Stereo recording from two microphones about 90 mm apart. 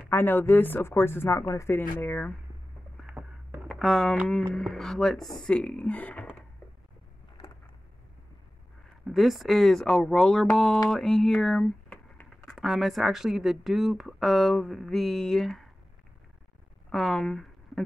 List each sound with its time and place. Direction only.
0.1 s speech: 25° left (ahead or behind)
3.0 s a sound: 10° right (ahead or behind)
3.6 s speech: 5° left (ahead or behind); by 6.4 s 20° left (ahead or behind)
9.0 s speech: centre (ahead or behind)
16.9 s speech: 5° left (ahead or behind)